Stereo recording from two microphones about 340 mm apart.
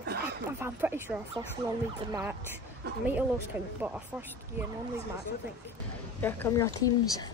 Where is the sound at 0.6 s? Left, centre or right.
Centre.